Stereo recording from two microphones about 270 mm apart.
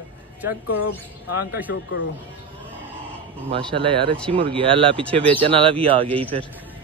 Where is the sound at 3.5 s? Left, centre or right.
Centre.